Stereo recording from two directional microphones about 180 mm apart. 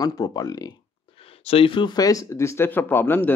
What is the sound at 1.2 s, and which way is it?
Speech, 30° left (ahead or behind).